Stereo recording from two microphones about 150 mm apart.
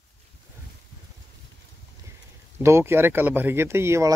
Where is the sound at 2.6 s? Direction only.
15° right (ahead or behind).